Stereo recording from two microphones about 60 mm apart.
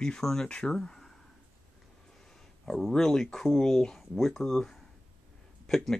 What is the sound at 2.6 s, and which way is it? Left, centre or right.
Speech, centre.